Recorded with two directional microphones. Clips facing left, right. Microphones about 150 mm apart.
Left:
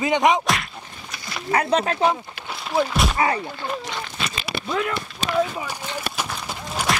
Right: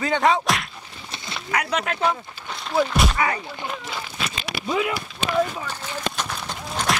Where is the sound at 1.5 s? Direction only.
30° left (ahead or behind).